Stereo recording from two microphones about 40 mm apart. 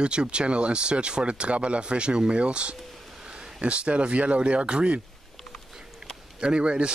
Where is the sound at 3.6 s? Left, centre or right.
Right.